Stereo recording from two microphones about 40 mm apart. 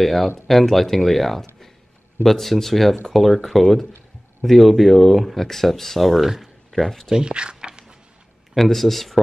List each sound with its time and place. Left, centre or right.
0.0 s speech: centre
6.2 s speech: centre
6.7 s speech: centre
7.1 s speech: centre
8.5 s speech: centre